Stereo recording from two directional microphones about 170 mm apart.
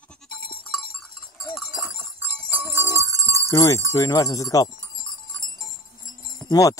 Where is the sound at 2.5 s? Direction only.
15° right (ahead or behind).